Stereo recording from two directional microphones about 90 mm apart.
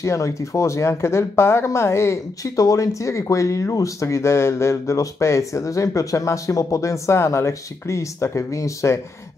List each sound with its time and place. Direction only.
0.0 s speech: 35° left (ahead or behind)